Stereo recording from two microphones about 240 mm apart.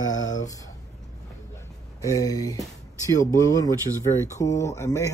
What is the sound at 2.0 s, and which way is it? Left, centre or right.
Speech, centre.